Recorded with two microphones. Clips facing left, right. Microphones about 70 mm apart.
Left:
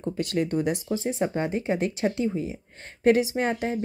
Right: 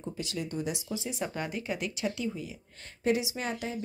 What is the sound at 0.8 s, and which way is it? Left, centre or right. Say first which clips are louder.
Speech: left 8 dB; left.